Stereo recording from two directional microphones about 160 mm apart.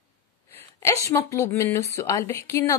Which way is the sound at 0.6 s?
15° left (ahead or behind).